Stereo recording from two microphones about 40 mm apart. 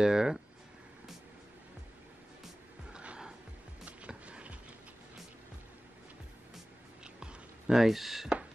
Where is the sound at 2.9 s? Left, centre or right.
Right.